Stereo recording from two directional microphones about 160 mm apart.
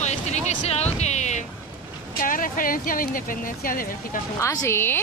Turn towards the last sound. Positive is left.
turn(degrees=15)  # may be behind; listen again after turning